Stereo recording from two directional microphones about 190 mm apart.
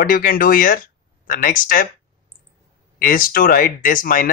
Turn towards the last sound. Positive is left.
turn(degrees=45)  # may be behind; listen again after turning